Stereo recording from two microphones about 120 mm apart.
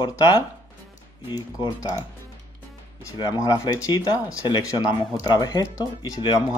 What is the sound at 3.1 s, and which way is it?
Speech, 30° left (ahead or behind).